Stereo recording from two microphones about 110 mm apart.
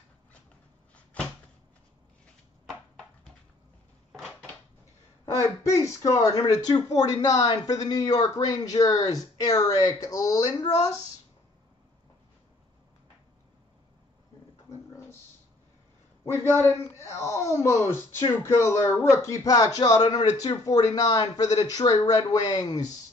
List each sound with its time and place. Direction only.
4.1 s dishes: 5° right (ahead or behind)
5.3 s speech: 25° left (ahead or behind)
14.7 s a sound: 25° left (ahead or behind)
17.0 s speech: 25° left (ahead or behind)